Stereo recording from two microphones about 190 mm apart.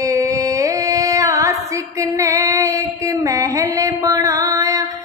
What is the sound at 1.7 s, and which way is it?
Female singing, 15° right (ahead or behind).